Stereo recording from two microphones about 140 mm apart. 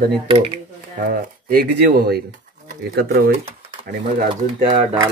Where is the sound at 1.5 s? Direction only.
90° right.